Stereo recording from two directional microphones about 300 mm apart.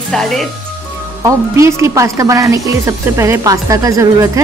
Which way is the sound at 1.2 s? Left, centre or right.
Centre.